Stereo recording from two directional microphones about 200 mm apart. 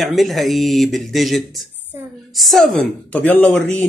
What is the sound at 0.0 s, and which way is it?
Speech, centre (ahead or behind).